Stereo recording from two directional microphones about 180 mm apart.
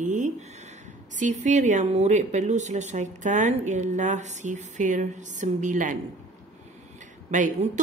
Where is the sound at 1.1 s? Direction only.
40° right (ahead or behind).